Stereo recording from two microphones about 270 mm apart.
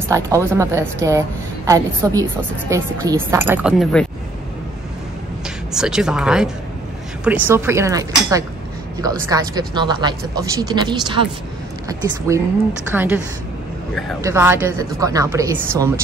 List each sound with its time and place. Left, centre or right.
0.1 s speech: centre
5.8 s speech: centre
14.2 s speech: centre